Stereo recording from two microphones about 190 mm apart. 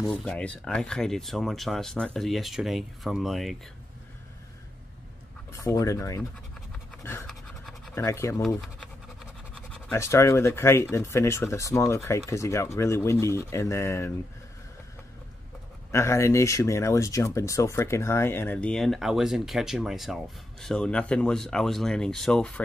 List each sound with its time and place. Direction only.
0.0 s speech: 5° left (ahead or behind)
5.5 s speech: 15° left (ahead or behind)
7.0 s scratch: 15° left (ahead or behind)
7.2 s scratch: centre (ahead or behind)
7.9 s speech: 15° left (ahead or behind)
8.4 s scratch: centre (ahead or behind)
9.9 s speech: 15° left (ahead or behind)
15.9 s speech: 15° left (ahead or behind)